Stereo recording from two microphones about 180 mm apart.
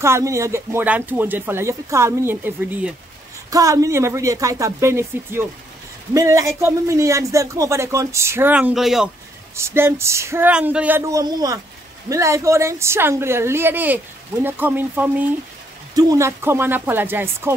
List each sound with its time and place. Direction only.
0.0 s a woman's voice: 15° right (ahead or behind)
9.6 s a woman's voice: 15° right (ahead or behind)
15.9 s a woman's voice: 20° right (ahead or behind)